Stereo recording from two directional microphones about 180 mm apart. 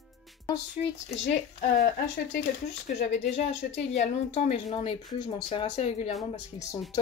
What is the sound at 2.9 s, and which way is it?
Speech, 55° left (ahead or behind).